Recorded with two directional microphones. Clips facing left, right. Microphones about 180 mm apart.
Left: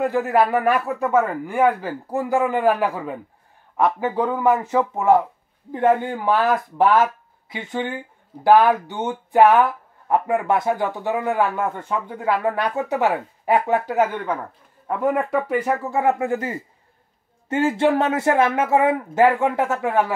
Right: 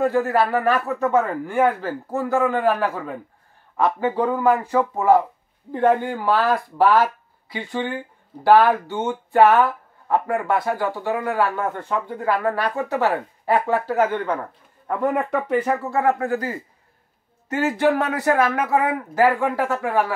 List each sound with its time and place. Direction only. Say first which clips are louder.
0.0 s speech: even; 15° left (ahead or behind)
4.4 s speech: left 1 dB; 20° left (ahead or behind)
14.9 s speech: left 1 dB; centre (ahead or behind)
15.9 s speech: left 1 dB; 20° left (ahead or behind)